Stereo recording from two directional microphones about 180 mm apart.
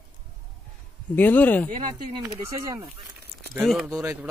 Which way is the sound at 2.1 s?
20° right (ahead or behind).